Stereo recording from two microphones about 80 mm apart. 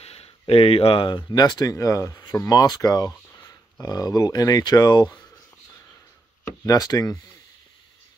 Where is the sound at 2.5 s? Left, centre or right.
Left.